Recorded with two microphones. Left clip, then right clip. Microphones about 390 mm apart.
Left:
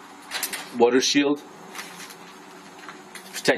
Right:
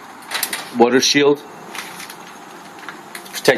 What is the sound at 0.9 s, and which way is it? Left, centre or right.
Speech, centre.